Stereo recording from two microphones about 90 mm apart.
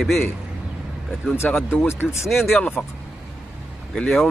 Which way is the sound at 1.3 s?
20° left (ahead or behind).